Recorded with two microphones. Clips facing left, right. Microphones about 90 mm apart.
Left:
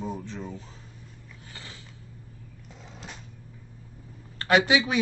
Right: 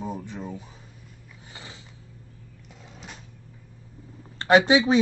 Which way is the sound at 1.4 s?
20° right (ahead or behind).